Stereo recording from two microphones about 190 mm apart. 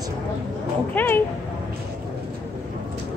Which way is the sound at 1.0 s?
10° left (ahead or behind).